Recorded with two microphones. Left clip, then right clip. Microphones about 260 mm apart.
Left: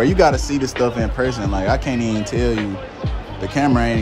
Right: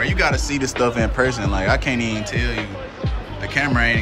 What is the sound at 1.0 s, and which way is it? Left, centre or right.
Music, centre.